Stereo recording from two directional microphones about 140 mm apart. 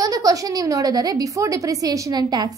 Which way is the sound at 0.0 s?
25° right (ahead or behind).